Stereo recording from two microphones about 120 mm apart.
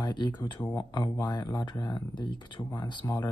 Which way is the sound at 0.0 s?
40° left (ahead or behind).